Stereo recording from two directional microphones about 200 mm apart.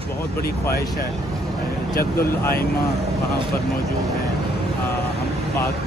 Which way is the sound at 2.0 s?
50° left (ahead or behind).